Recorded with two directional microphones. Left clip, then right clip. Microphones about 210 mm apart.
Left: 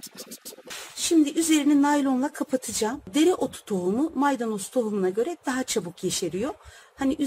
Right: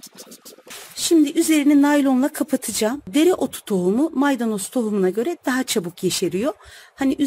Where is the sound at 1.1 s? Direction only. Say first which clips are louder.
Right 5 dB; 40° right (ahead or behind).